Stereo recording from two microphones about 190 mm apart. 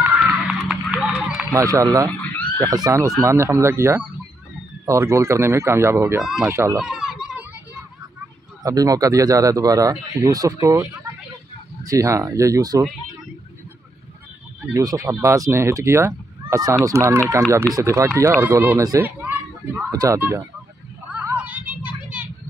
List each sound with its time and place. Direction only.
0.0 s run: centre (ahead or behind)
1.5 s speech: 15° right (ahead or behind)
6.8 s children playing: 5° right (ahead or behind)
8.6 s speech: 20° right (ahead or behind)
14.7 s speech: 20° right (ahead or behind)
21.4 s a sound: 5° right (ahead or behind)